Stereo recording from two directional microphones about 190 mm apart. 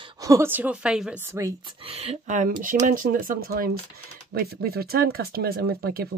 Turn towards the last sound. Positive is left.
turn(degrees=-55)  # may be behind; listen again after turning